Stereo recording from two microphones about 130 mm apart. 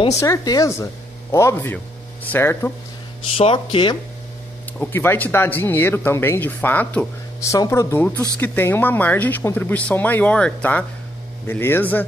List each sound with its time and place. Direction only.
0.2 s speech: 25° left (ahead or behind)
3.3 s speech: 45° left (ahead or behind)
4.7 s speech: 15° left (ahead or behind)
7.4 s speech: 25° left (ahead or behind)